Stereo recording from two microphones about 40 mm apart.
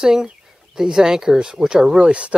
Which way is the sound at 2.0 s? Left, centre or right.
Right.